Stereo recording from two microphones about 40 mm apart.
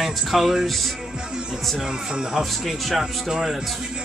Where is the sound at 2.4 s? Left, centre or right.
Centre.